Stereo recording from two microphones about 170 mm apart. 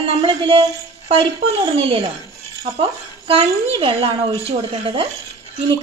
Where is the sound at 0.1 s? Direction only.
35° right (ahead or behind).